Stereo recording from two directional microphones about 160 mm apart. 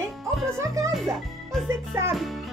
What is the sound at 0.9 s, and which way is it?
Speech, centre (ahead or behind).